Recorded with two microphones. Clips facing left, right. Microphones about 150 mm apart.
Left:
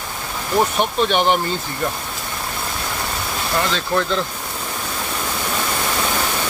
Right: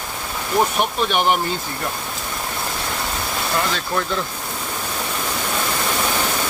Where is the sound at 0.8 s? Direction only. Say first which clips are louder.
Left 2 dB; 5° right (ahead or behind).